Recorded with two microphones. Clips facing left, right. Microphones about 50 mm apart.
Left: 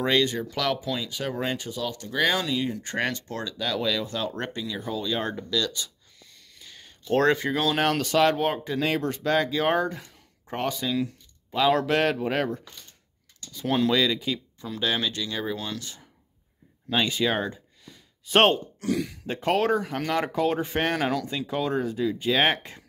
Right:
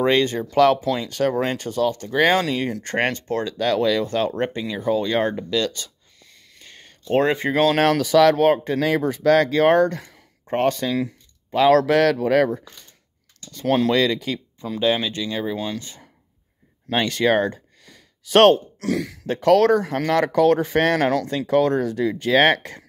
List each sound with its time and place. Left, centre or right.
0.0 s speech: right
2.4 s speech: right
3.5 s speech: right
4.0 s speech: right
4.3 s speech: right
6.6 s a sound: right
7.3 s speech: right
7.7 s speech: right
10.5 s speech: right
11.5 s speech: right
13.5 s speech: right
14.6 s speech: right
16.9 s speech: right